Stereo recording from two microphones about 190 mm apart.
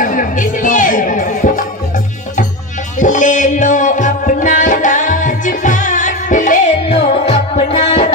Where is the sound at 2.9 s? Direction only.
40° left (ahead or behind).